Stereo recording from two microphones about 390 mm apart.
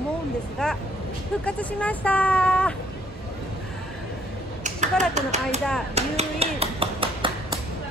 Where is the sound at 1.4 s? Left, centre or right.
Centre.